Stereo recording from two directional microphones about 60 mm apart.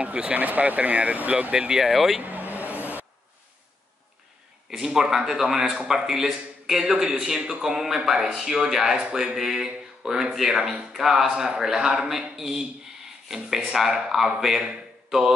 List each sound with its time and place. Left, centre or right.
0.0 s speech: right
1.8 s speech: centre
2.2 s vehicle: right
4.6 s speech: centre
13.7 s speech: centre